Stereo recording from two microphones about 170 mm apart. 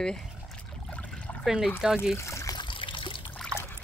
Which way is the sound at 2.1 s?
15° left (ahead or behind).